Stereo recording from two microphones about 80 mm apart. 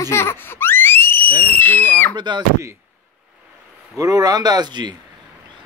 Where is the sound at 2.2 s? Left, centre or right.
Right.